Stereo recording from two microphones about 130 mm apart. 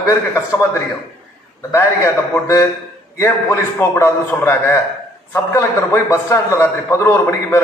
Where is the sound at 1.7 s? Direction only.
20° left (ahead or behind).